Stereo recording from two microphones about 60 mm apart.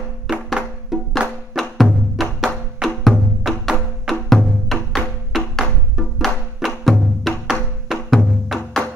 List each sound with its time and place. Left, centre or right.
0.3 s music: centre